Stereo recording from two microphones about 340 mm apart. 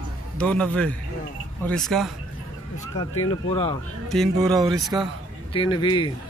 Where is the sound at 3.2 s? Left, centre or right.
Centre.